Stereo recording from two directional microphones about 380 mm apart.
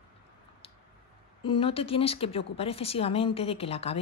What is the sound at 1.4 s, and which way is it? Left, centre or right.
A woman's voice, centre.